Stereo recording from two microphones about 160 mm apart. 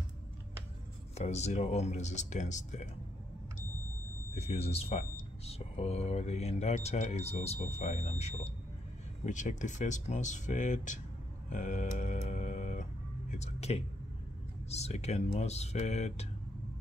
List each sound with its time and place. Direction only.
1.1 s speech: 45° left (ahead or behind)
4.4 s speech: 40° left (ahead or behind)
11.5 s a sound: 50° left (ahead or behind)
13.4 s speech: 40° left (ahead or behind)